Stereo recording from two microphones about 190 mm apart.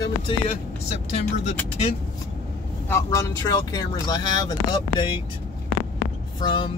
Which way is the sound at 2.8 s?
15° left (ahead or behind).